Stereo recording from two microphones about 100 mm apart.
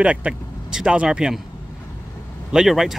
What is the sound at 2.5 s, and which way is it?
Speech, centre (ahead or behind).